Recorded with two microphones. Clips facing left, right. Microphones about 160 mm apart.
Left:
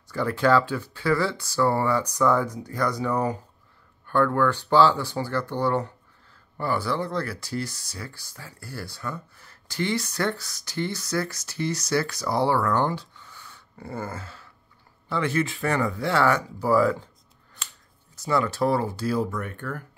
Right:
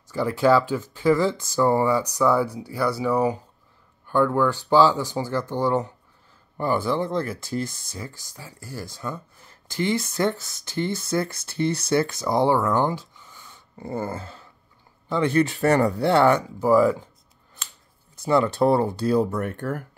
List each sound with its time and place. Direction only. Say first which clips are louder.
0.1 s speech: right 2 dB; 10° right (ahead or behind)
15.6 s speech: right 6 dB; 40° right (ahead or behind); by 16.9 s 15° right (ahead or behind)
18.2 s speech: right 4 dB; 25° right (ahead or behind)
19.3 s speech: right 5 dB; 40° right (ahead or behind)